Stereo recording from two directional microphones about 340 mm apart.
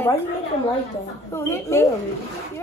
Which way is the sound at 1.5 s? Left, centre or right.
Centre.